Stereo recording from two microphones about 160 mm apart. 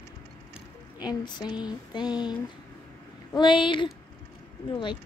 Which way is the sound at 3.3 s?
30° left (ahead or behind).